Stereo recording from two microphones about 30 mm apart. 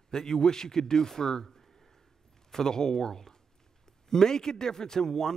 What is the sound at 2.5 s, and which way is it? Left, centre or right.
Speech, centre.